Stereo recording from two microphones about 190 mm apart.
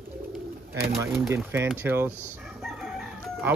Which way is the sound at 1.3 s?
15° right (ahead or behind).